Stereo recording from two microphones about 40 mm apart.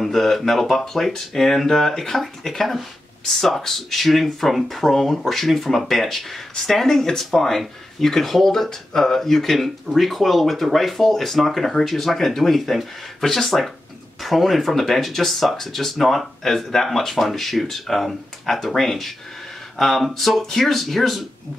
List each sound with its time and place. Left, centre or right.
0.0 s speech: centre